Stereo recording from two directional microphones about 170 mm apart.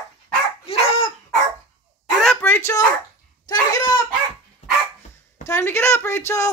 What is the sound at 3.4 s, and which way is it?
Speech, 20° left (ahead or behind).